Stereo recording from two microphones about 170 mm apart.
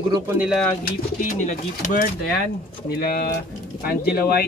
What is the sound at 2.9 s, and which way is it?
Speech, 60° left (ahead or behind).